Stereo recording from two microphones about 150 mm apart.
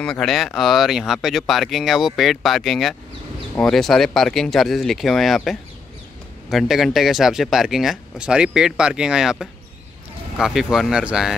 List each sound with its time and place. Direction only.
0.0 s speech: 5° left (ahead or behind)